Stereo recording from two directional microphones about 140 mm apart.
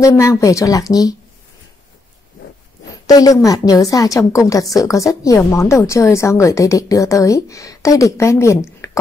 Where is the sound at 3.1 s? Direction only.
25° left (ahead or behind).